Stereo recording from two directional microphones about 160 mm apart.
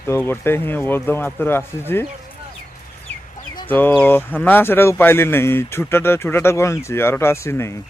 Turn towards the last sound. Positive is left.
turn(degrees=15)  # may be behind; listen again after turning